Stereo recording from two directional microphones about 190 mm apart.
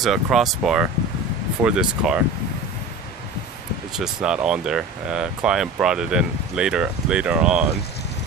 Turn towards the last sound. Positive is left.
turn(degrees=-5)  # may be behind; listen again after turning